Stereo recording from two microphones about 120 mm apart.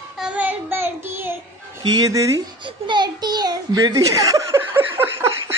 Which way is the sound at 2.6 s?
40° right (ahead or behind).